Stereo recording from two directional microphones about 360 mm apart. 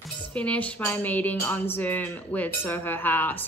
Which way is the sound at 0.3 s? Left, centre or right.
Centre.